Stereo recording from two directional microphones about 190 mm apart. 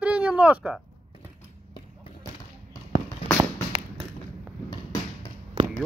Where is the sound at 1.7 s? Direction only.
25° left (ahead or behind).